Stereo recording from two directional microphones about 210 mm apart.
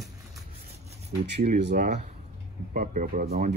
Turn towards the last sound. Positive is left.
turn(degrees=-35)  # may be behind; listen again after turning